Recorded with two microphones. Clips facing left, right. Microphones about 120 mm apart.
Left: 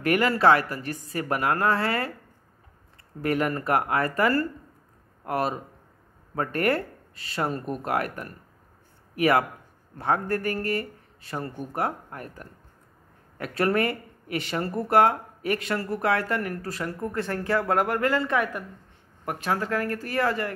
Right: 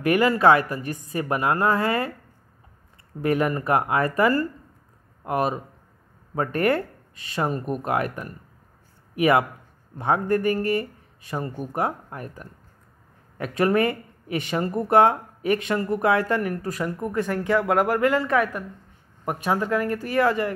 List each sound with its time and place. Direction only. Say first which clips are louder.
0.0 s speech: right 3 dB; 20° right (ahead or behind)
3.2 s speech: right 3 dB; 20° right (ahead or behind)
7.8 s a man's voice: right 1 dB; 20° right (ahead or behind)
19.2 s speech: right 3 dB; 20° right (ahead or behind)